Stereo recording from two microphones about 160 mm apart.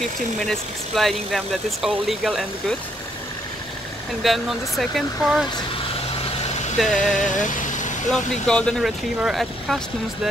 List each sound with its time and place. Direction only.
0.0 s speech: 5° left (ahead or behind)
4.2 s speech: centre (ahead or behind)
6.8 s speech: centre (ahead or behind)
7.2 s vehicle: 50° left (ahead or behind)
8.1 s speech: 5° left (ahead or behind)